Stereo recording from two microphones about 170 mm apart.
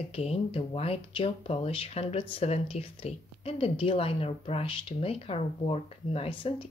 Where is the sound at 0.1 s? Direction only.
35° left (ahead or behind).